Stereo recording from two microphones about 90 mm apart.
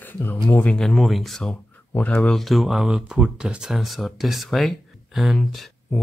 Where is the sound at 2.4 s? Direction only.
Centre (ahead or behind).